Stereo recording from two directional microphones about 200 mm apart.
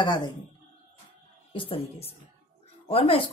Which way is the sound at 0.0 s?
20° left (ahead or behind).